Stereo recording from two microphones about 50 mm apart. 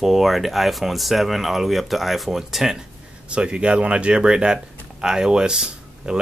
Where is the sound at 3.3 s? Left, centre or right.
Centre.